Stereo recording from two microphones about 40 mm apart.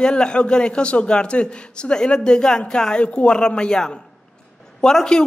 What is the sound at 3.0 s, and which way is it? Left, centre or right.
A man's voice, left.